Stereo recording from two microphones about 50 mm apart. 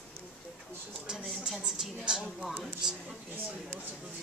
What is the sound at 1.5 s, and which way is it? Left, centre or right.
A woman's voice, centre.